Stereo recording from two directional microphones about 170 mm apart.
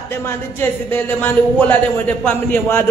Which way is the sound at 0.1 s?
10° left (ahead or behind).